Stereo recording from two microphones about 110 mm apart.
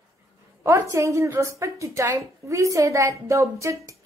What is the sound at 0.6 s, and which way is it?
A woman's voice, 25° right (ahead or behind).